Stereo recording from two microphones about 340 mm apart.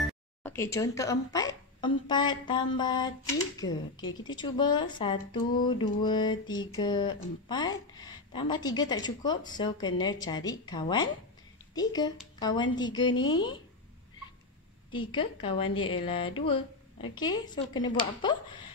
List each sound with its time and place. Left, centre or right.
0.0 s music: centre
2.0 s speech: centre
14.9 s speech: centre